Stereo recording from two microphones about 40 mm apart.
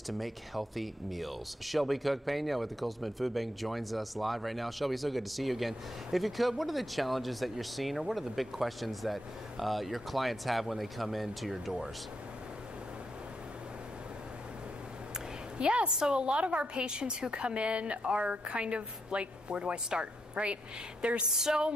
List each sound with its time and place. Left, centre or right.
0.2 s speech: centre
15.5 s a woman's voice: right
15.9 s a woman's voice: centre
21.3 s a woman's voice: centre